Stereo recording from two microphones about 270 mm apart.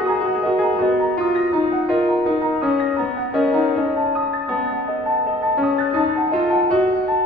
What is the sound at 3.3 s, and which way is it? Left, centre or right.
Music, centre.